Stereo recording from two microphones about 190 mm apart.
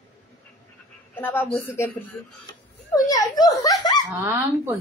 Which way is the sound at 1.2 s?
10° left (ahead or behind).